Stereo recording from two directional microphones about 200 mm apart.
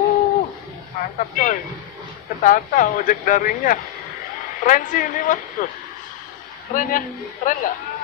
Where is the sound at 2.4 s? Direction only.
40° left (ahead or behind).